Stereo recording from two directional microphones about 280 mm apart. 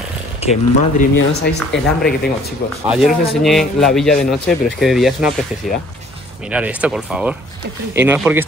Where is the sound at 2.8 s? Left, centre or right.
Centre.